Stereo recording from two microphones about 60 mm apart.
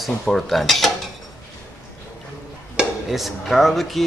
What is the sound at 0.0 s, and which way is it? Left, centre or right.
Speech, centre.